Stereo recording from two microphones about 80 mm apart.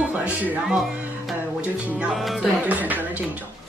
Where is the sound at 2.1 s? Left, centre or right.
Centre.